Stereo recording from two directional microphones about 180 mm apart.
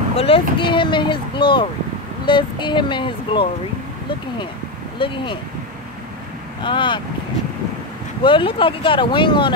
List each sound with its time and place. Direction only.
0.2 s speech: 30° left (ahead or behind)
4.9 s speech: 30° left (ahead or behind)
6.6 s speech: 25° left (ahead or behind)
8.2 s speech: 30° left (ahead or behind)